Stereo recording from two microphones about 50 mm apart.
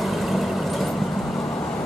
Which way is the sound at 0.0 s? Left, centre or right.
Centre.